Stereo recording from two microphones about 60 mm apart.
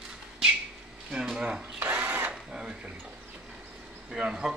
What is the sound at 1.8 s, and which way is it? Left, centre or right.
Drill, right.